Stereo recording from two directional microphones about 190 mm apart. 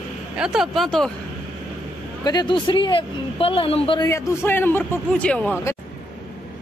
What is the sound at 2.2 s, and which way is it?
Speech, 20° left (ahead or behind).